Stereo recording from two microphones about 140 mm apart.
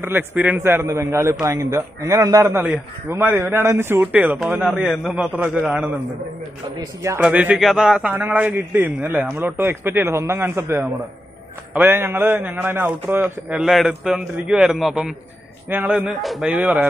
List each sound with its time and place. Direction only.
0.0 s a man's voice: 15° right (ahead or behind)
4.6 s speech: centre (ahead or behind)
6.8 s a man's voice: 20° right (ahead or behind)
7.2 s a man's voice: 10° right (ahead or behind)